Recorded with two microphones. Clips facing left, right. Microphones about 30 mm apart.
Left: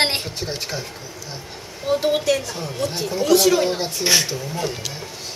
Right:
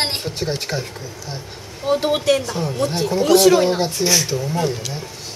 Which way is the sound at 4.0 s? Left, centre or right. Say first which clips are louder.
Left 3 dB; left.